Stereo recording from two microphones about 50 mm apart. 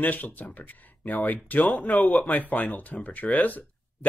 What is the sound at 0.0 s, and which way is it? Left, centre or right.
Speech, left.